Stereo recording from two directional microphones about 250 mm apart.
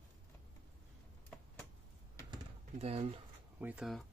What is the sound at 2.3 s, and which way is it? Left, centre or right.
Typing, right.